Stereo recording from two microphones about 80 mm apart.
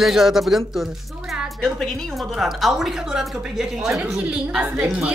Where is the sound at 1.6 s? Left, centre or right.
Centre.